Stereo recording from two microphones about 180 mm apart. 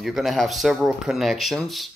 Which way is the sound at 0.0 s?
Centre (ahead or behind).